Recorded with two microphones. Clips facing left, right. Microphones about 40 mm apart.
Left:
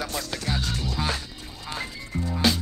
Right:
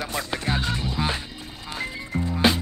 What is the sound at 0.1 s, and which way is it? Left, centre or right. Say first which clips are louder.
Music: right 3 dB; right.